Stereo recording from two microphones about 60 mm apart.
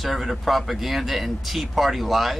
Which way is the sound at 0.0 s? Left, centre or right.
Centre.